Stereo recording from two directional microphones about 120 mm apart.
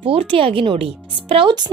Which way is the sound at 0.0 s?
50° right (ahead or behind).